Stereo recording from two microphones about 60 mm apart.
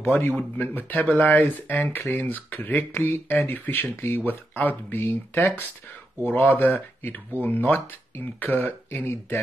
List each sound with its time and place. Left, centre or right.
0.2 s speech: left